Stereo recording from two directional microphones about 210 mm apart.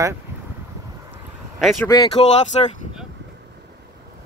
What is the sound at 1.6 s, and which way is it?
Speech, centre (ahead or behind).